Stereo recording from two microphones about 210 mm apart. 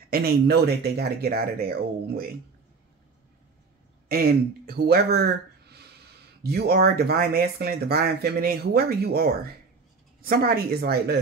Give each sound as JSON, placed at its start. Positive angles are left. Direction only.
{"t": 0.1, "sound": "speech", "side_deg": -50}
{"t": 4.1, "sound": "speech", "side_deg": -45}